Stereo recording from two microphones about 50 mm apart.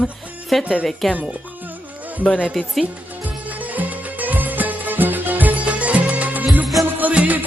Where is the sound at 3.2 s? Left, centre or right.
Right.